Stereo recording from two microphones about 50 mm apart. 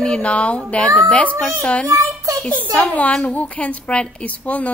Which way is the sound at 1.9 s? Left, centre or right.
Right.